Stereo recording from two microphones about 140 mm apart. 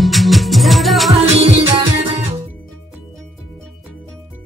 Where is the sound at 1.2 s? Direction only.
45° right (ahead or behind).